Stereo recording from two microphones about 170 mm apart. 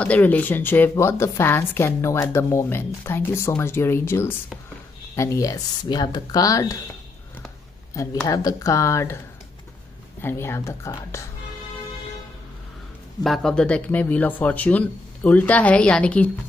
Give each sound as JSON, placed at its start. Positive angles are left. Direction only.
{"t": 0.0, "sound": "speech", "side_deg": 10}
{"t": 7.9, "sound": "speech", "side_deg": 20}
{"t": 10.2, "sound": "speech", "side_deg": 15}
{"t": 13.2, "sound": "speech", "side_deg": 0}